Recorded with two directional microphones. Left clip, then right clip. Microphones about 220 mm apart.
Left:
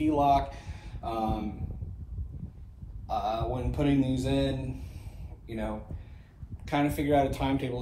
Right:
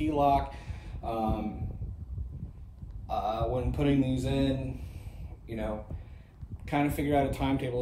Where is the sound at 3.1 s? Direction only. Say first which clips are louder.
Left 1 dB; 30° left (ahead or behind).